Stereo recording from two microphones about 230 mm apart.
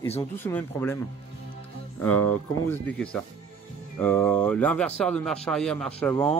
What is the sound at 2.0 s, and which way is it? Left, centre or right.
Speech, centre.